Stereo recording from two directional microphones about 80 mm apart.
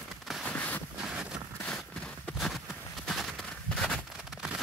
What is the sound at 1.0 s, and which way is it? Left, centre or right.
Vehicle, centre.